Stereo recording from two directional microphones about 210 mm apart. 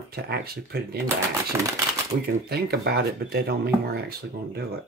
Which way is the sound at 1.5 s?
15° right (ahead or behind).